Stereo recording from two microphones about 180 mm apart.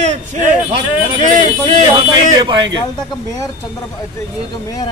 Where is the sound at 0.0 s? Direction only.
40° right (ahead or behind).